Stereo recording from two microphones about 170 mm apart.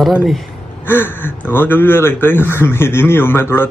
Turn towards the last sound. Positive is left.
turn(degrees=15)  # may be behind; listen again after turning